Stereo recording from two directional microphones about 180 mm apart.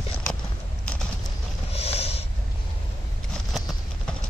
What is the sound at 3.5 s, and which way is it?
Clip-clop, centre (ahead or behind).